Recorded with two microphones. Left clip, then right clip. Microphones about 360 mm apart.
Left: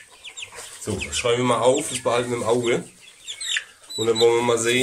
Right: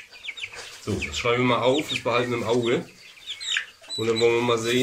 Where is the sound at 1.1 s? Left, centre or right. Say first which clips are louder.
Left 2 dB; left.